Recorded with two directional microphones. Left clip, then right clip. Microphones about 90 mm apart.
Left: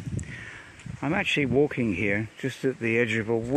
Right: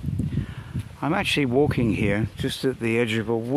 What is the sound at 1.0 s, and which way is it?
Speech, 50° right (ahead or behind).